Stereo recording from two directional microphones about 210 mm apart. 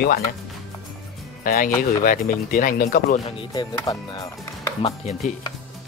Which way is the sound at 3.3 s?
20° left (ahead or behind).